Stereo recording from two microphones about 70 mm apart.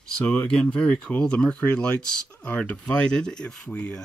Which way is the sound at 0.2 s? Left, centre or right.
Centre.